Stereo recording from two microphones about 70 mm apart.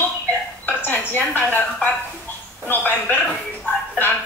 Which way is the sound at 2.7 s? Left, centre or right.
Left.